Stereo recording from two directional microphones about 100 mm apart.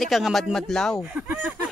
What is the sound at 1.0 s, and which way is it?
Speech, 10° right (ahead or behind).